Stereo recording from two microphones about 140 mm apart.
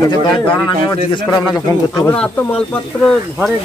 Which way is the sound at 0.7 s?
35° left (ahead or behind).